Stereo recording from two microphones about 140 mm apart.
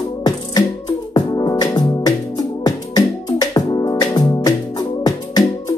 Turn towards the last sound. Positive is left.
turn(degrees=30)  # may be behind; listen again after turning